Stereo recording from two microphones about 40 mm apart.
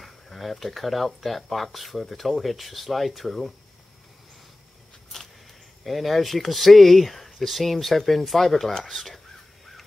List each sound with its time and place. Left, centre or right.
0.0 s speech: centre
5.1 s a sound: centre
5.9 s speech: centre